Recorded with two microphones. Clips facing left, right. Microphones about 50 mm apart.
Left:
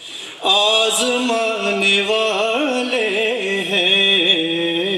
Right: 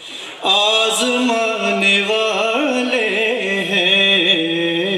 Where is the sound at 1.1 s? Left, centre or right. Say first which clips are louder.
Right 1 dB; centre.